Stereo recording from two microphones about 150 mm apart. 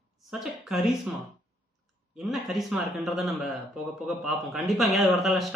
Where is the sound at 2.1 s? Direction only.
Centre (ahead or behind).